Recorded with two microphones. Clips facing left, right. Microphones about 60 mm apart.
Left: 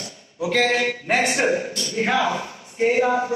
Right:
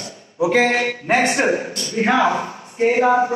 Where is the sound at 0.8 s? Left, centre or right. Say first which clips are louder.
Right 3 dB; centre; by 2.8 s right.